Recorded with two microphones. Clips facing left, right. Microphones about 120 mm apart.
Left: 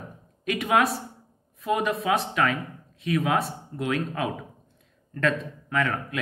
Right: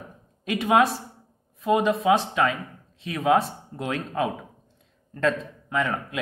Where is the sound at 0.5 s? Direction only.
25° right (ahead or behind).